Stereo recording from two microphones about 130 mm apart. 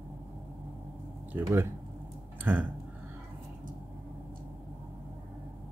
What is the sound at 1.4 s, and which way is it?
Speech, 20° right (ahead or behind).